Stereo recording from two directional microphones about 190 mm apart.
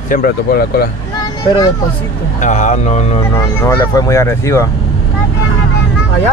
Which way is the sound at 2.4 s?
40° left (ahead or behind).